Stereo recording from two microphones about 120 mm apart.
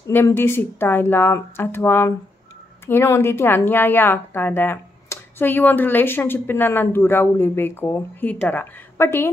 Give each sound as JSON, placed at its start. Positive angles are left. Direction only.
{"t": 0.0, "sound": "a woman's voice", "side_deg": 20}